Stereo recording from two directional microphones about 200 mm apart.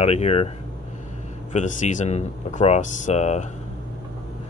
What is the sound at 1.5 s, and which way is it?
Speech, 40° left (ahead or behind).